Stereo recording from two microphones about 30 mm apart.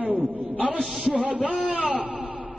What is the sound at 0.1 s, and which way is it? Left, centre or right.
A man's voice, right.